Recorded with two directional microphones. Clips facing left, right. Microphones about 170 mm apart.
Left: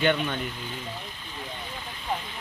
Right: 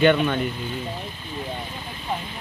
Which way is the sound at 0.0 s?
90° right.